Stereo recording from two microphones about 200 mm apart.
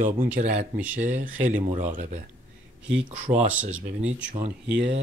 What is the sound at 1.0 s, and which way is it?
Speech, 40° right (ahead or behind).